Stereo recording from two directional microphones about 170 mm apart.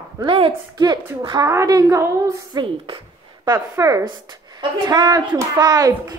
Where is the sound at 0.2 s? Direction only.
30° right (ahead or behind).